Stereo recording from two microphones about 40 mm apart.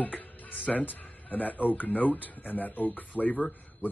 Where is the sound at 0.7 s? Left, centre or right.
Centre.